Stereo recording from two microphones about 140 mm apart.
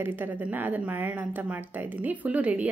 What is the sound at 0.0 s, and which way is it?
Speech, 15° right (ahead or behind).